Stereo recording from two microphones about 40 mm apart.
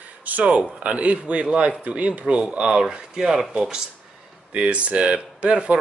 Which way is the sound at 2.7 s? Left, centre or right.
Right.